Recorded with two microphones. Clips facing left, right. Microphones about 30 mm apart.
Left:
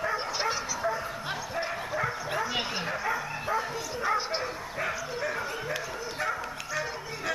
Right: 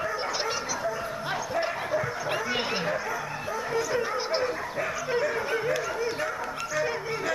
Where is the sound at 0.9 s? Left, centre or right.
Centre.